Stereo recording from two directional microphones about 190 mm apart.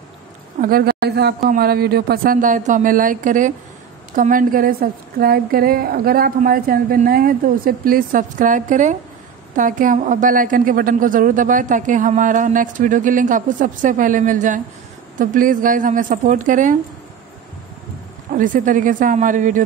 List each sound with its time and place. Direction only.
0.6 s a woman's voice: 50° right (ahead or behind)
18.3 s a woman's voice: 45° right (ahead or behind)